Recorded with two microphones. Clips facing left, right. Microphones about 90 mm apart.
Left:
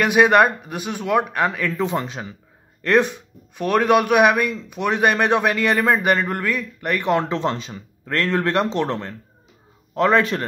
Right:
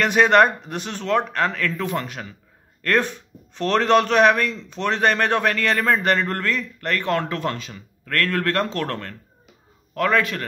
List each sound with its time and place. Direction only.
0.0 s a man's voice: 10° left (ahead or behind); by 10.4 s 25° left (ahead or behind)